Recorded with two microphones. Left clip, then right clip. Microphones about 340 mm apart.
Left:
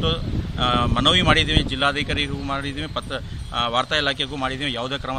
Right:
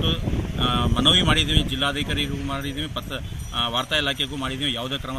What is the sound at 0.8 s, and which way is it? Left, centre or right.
Speech, centre.